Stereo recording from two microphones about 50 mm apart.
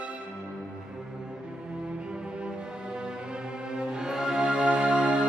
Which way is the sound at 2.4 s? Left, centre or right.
Centre.